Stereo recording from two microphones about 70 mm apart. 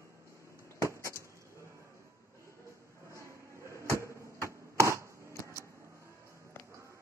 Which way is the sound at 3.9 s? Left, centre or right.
Right.